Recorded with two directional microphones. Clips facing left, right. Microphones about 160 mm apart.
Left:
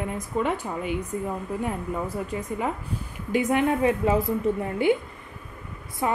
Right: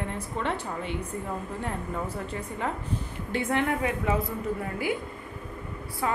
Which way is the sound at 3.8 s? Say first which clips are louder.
Left 6 dB; 30° left (ahead or behind).